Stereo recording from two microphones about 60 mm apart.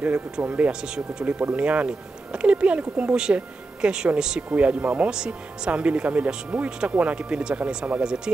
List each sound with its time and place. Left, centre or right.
0.0 s speech: right